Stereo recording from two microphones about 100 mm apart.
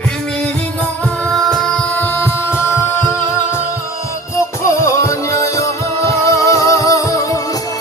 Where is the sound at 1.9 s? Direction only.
20° left (ahead or behind).